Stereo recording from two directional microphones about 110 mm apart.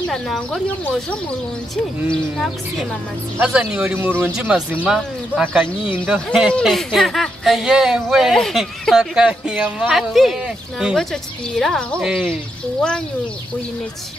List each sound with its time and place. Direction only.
0.1 s speech: centre (ahead or behind)
2.3 s speech: centre (ahead or behind)
3.3 s speech: 10° right (ahead or behind)